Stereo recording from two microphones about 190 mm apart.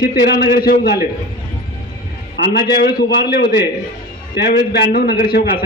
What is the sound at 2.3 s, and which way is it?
A man's voice, 60° left (ahead or behind).